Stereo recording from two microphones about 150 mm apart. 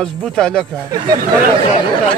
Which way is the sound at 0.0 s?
5° left (ahead or behind).